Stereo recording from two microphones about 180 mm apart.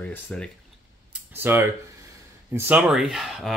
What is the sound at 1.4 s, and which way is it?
Speech, 10° right (ahead or behind).